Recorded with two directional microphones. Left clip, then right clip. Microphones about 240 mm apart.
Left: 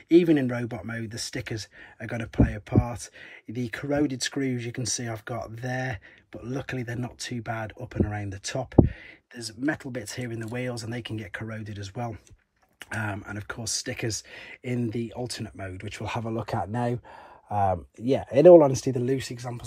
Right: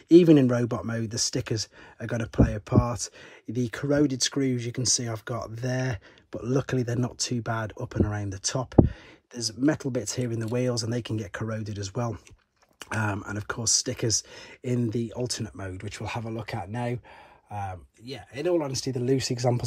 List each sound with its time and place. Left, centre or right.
0.1 s speech: centre
16.1 s speech: centre
17.5 s speech: centre
18.8 s speech: centre
19.0 s speech: centre